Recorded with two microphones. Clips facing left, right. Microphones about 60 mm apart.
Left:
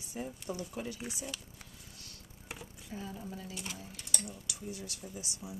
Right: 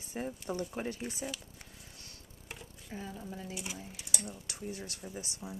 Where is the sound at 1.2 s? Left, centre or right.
Centre.